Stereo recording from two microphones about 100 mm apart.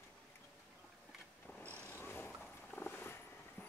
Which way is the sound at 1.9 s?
20° left (ahead or behind).